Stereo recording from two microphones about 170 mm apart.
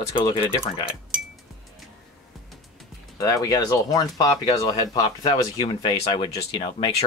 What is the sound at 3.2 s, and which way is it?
Speech, 20° left (ahead or behind).